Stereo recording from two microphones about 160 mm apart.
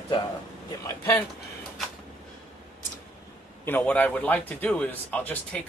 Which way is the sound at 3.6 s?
10° left (ahead or behind).